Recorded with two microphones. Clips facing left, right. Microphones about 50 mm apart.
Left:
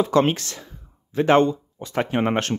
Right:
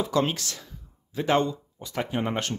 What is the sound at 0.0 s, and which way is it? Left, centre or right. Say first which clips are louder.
Speech: left 6 dB; left.